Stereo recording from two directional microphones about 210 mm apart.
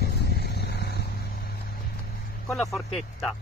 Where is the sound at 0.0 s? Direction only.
50° left (ahead or behind).